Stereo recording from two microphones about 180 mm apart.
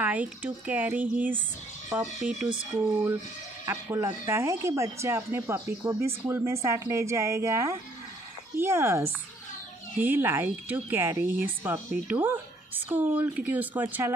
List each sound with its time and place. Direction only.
0.0 s speech: 10° right (ahead or behind)
3.6 s speech: 15° right (ahead or behind)